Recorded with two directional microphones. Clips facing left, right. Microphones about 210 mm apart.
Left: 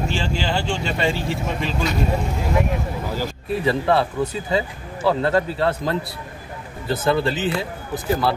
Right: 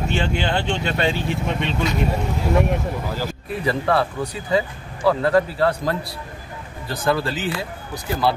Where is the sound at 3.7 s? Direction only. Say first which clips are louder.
Left 1 dB; 25° left (ahead or behind).